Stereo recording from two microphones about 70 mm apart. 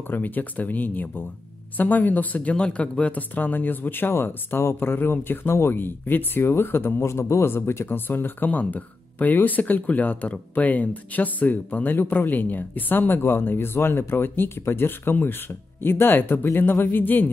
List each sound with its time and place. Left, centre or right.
0.1 s speech: left